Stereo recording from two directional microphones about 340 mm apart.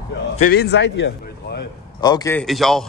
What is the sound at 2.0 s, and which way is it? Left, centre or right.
Speech, centre.